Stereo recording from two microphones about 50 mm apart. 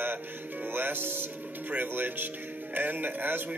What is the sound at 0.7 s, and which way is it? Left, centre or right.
Music, right.